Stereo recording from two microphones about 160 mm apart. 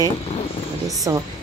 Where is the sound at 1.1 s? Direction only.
20° right (ahead or behind).